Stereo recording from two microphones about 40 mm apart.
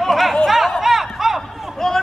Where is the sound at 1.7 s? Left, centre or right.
Centre.